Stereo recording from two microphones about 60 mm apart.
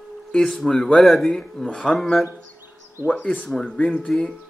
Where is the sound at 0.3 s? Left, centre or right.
Centre.